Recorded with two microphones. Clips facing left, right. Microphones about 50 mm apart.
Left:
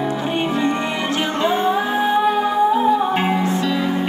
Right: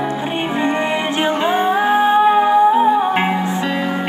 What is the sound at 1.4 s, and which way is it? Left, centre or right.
Music, centre.